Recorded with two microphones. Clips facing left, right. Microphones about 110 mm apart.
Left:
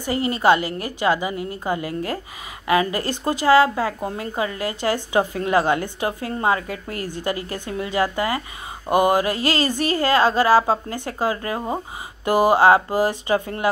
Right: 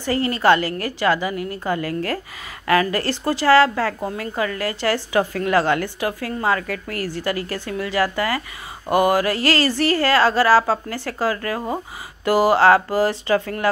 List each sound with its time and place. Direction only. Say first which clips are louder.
0.0 s a woman's voice: right 1 dB; 20° left (ahead or behind)